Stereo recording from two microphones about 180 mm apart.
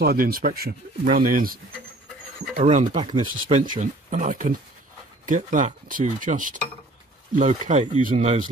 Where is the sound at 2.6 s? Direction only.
45° right (ahead or behind).